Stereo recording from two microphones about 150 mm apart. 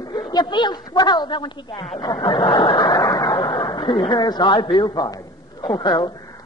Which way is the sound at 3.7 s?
35° left (ahead or behind).